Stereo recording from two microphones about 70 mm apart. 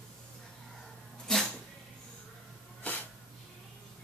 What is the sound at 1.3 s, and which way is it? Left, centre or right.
Cat, centre.